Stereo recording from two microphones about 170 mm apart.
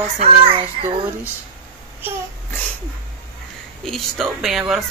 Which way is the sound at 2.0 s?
10° right (ahead or behind).